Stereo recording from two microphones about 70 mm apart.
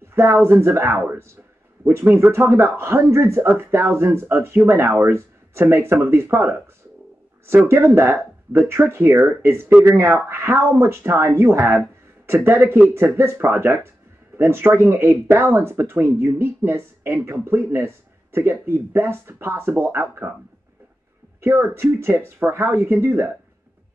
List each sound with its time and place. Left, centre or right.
0.0 s speech: right
21.4 s speech: right